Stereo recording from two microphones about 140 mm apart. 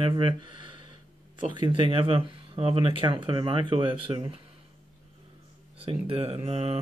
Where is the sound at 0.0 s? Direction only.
35° right (ahead or behind).